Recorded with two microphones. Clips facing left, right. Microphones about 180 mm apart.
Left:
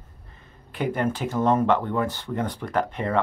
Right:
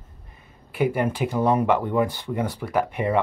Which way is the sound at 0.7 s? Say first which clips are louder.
Right 3 dB; 10° right (ahead or behind).